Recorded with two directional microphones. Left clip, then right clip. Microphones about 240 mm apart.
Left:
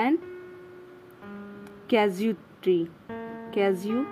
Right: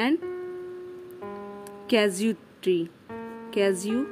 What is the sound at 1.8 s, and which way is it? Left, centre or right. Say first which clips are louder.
A woman's voice: even; centre.